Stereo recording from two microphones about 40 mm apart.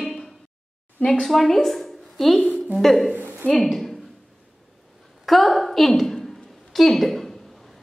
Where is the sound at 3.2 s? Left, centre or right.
Right.